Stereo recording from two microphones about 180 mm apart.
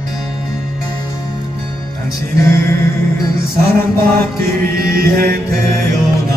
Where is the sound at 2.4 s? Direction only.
15° left (ahead or behind).